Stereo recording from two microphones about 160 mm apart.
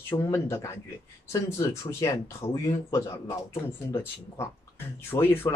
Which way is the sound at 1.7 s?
20° left (ahead or behind).